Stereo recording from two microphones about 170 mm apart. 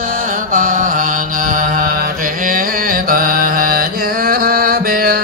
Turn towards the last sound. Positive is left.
turn(degrees=-60)  # may be behind; listen again after turning